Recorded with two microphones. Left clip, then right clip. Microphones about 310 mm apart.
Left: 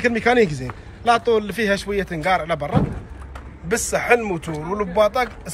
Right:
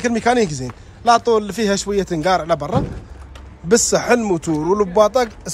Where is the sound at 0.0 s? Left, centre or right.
Centre.